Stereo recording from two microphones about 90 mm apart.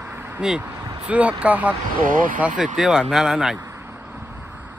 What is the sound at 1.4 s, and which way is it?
Speech, 15° right (ahead or behind).